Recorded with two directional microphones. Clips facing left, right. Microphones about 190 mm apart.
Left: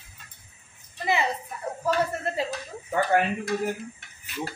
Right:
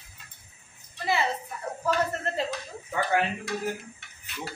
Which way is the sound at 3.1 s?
50° left (ahead or behind).